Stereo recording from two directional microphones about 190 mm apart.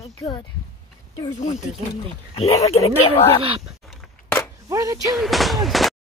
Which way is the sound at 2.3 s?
30° left (ahead or behind).